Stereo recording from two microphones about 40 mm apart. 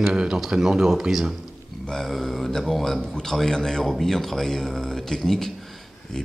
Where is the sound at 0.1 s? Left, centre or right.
Centre.